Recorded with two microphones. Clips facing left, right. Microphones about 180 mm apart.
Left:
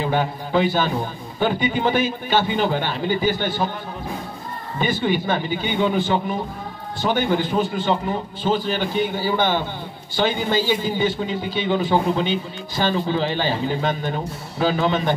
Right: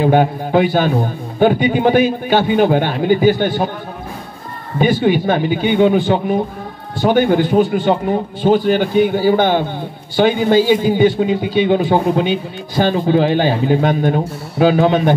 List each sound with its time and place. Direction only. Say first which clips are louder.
0.0 s speech: right 9 dB; 50° right (ahead or behind)
4.7 s speech: right 8 dB; 55° right (ahead or behind)